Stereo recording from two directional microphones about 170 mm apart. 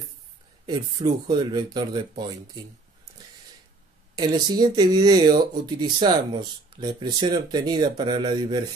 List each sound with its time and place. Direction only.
0.7 s speech: 25° right (ahead or behind)
4.1 s speech: 25° right (ahead or behind)